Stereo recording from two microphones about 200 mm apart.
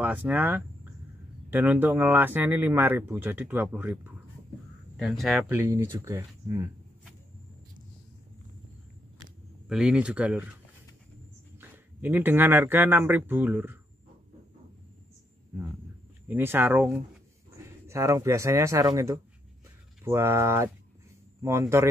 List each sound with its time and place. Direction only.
0.0 s speech: 10° right (ahead or behind)
9.7 s speech: 5° right (ahead or behind)
11.6 s speech: 10° right (ahead or behind)
16.3 s speech: 10° right (ahead or behind)